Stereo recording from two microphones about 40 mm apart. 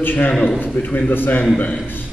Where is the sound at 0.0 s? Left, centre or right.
Left.